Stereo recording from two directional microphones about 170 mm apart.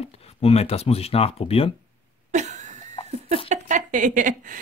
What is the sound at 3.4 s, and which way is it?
A woman's voice, 50° right (ahead or behind).